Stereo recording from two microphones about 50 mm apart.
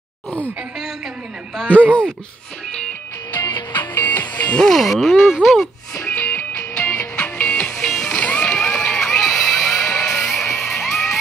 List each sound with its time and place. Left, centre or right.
1.7 s speech: left
3.3 s music: left
4.6 s speech: centre
6.1 s music: left
7.0 s music: left
7.7 s music: centre
8.1 s music: left
9.2 s a sound: centre
10.0 s music: centre